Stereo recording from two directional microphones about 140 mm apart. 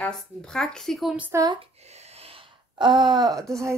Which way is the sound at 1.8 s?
50° right (ahead or behind).